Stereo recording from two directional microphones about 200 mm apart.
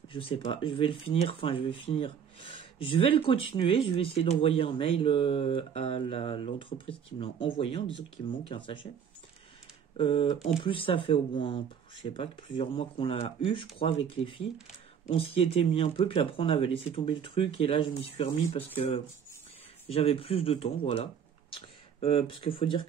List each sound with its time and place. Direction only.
0.1 s speech: 25° left (ahead or behind)
9.9 s speech: 25° left (ahead or behind)